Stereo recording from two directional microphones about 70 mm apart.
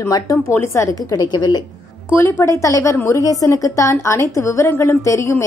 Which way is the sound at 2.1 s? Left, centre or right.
Left.